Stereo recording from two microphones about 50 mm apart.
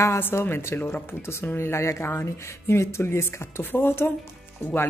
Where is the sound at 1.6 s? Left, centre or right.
Left.